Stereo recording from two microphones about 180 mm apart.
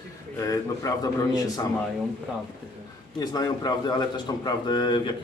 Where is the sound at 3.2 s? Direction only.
20° left (ahead or behind).